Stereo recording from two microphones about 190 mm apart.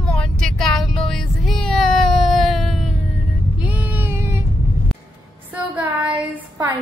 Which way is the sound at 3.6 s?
10° right (ahead or behind).